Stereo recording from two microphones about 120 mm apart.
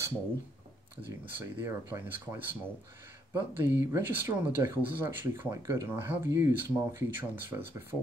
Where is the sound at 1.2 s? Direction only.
20° right (ahead or behind).